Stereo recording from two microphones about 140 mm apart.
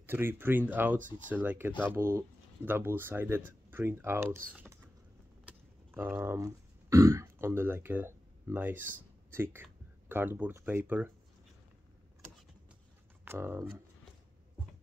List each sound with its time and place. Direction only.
0.0 s speech: 15° right (ahead or behind)
5.9 s speech: 15° right (ahead or behind)
13.2 s speech: 15° right (ahead or behind)